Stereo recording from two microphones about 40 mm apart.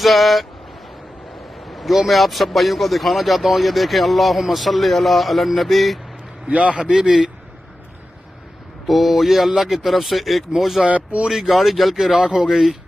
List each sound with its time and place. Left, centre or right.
0.0 s speech: centre
1.6 s speech: centre
6.4 s a man's voice: right
6.8 s a man's voice: right
8.8 s speech: centre
10.9 s a man's voice: right
11.2 s speech: centre
12.1 s a man's voice: right
12.4 s speech: centre